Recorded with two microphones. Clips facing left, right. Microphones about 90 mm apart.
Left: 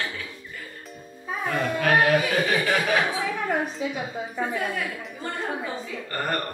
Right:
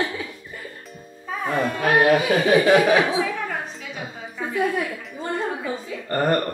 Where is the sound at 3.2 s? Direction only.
10° left (ahead or behind).